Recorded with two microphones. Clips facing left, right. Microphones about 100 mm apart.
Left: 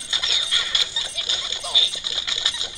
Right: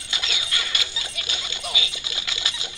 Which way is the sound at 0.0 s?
30° left (ahead or behind).